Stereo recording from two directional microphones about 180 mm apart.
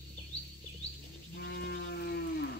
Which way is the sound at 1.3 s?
70° left (ahead or behind).